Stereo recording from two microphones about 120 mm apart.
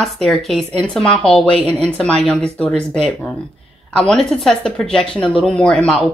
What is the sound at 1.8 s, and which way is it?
Speech, 5° left (ahead or behind).